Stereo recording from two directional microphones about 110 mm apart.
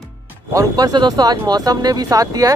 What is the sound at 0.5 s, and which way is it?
Speech, 35° right (ahead or behind).